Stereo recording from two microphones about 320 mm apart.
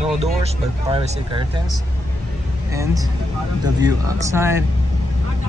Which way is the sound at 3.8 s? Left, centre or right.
Centre.